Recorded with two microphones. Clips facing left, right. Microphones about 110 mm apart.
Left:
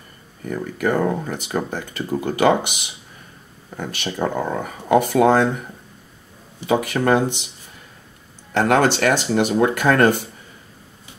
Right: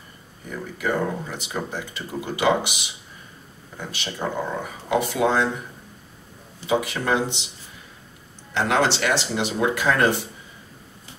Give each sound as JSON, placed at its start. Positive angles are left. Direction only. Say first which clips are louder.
{"t": 0.5, "sound": "speech", "louder": "left 5 dB", "side_deg": 50}
{"t": 6.6, "sound": "speech", "louder": "left 4 dB", "side_deg": 50}
{"t": 8.5, "sound": "speech", "louder": "left 5 dB", "side_deg": 50}